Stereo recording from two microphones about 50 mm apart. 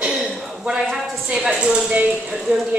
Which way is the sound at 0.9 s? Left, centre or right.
Centre.